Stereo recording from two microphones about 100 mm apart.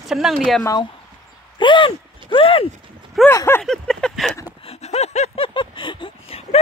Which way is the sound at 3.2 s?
25° left (ahead or behind).